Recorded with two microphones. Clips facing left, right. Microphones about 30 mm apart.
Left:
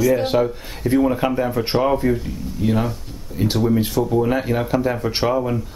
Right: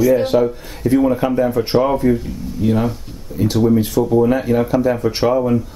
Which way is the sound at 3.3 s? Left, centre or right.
Left.